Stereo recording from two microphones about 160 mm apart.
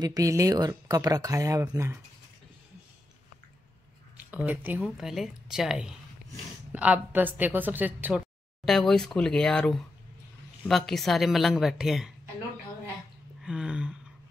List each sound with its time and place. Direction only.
0.0 s speech: 20° right (ahead or behind)
4.3 s a woman's voice: 10° right (ahead or behind)
8.6 s speech: 5° left (ahead or behind)
13.4 s a sound: 5° right (ahead or behind)